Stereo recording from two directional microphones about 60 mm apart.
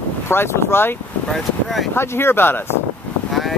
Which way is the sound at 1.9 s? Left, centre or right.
Left.